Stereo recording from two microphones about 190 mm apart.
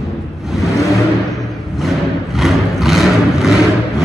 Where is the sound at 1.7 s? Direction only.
Centre (ahead or behind).